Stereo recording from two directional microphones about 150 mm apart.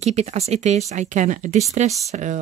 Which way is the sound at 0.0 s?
45° right (ahead or behind).